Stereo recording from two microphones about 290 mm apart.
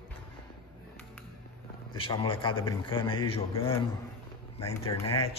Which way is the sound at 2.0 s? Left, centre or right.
Centre.